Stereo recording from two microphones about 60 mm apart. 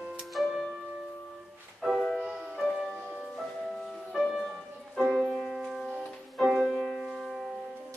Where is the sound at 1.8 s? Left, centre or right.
Centre.